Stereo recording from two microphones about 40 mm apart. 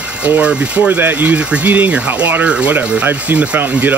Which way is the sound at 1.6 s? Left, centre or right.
Right.